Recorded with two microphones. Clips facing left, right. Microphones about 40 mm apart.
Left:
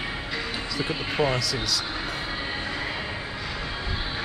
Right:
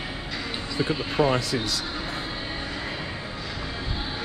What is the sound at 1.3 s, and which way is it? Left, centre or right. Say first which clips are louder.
Speech: right 2 dB; right.